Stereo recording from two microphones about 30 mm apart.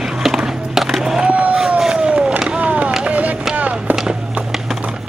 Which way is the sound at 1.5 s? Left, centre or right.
Centre.